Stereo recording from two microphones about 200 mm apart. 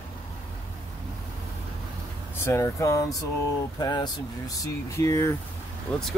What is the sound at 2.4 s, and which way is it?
Speech, 15° left (ahead or behind).